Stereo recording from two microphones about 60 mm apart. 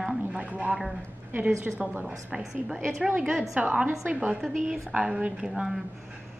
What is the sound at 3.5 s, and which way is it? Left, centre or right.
A woman's voice, right.